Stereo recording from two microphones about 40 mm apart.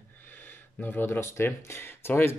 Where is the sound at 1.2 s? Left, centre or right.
Left.